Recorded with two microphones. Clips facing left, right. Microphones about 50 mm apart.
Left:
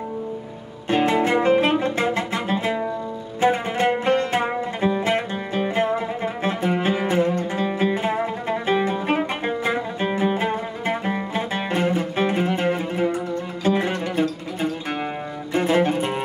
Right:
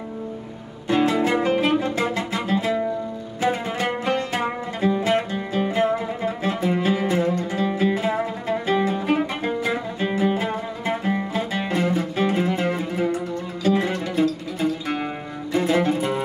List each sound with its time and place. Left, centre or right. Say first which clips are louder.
0.8 s music: even; left